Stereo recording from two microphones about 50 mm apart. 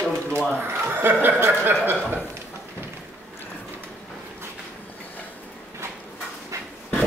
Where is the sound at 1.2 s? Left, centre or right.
Right.